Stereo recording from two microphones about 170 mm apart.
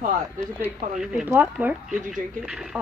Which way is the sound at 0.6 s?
5° right (ahead or behind).